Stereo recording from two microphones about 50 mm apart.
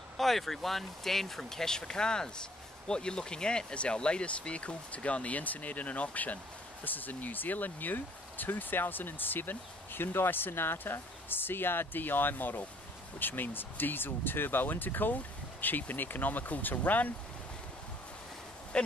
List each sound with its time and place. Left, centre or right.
0.2 s speech: centre; by 17.1 s left